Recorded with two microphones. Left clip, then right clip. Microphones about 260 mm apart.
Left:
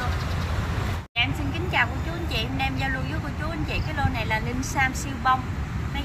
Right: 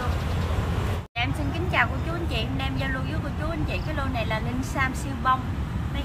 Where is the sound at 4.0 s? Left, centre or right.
Centre.